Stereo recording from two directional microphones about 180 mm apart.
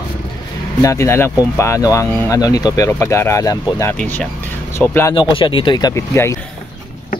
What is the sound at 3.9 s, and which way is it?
Speech, 10° left (ahead or behind).